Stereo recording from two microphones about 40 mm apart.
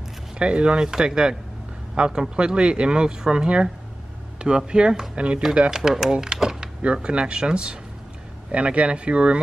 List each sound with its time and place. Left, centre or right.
0.4 s speech: right
5.7 s speech: centre
6.1 s typing: centre
6.8 s speech: right